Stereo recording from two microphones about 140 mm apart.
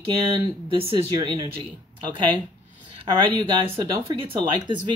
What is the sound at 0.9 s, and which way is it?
Speech, 35° right (ahead or behind).